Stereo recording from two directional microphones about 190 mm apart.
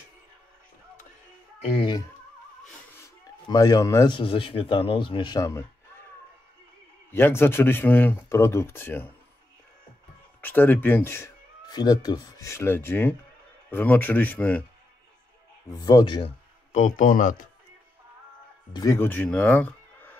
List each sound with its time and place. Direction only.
1.6 s a man's voice: 30° left (ahead or behind)
7.1 s speech: 10° left (ahead or behind)
10.4 s speech: 10° left (ahead or behind)
15.8 s a man's voice: 20° left (ahead or behind)
16.7 s speech: 40° left (ahead or behind)
18.7 s speech: 20° left (ahead or behind)